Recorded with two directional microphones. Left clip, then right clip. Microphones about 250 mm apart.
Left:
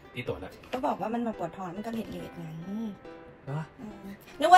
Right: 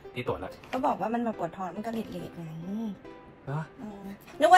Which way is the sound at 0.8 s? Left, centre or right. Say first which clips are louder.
Right 2 dB; centre.